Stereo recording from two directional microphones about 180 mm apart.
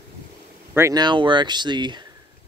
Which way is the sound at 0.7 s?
20° right (ahead or behind).